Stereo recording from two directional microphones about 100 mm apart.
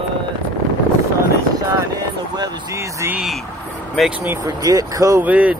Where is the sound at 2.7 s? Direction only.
30° right (ahead or behind).